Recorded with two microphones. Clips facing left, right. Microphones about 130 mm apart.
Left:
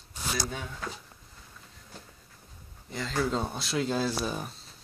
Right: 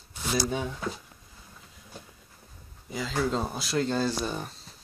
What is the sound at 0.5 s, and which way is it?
Speech, 20° right (ahead or behind).